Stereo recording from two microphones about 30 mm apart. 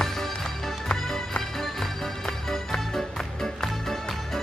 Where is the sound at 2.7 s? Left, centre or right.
Centre.